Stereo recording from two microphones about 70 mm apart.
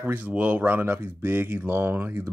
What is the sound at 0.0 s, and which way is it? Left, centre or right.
Speech, right.